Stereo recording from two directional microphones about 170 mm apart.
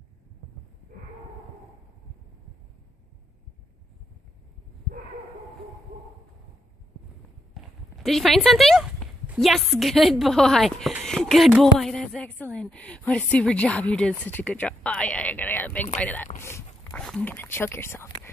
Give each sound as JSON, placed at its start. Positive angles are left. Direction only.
{"t": 8.0, "sound": "a woman's voice", "side_deg": 0}
{"t": 16.3, "sound": "a sound", "side_deg": 15}
{"t": 17.0, "sound": "speech", "side_deg": 5}